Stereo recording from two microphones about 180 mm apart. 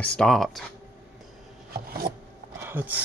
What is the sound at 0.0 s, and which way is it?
Speech, 5° left (ahead or behind).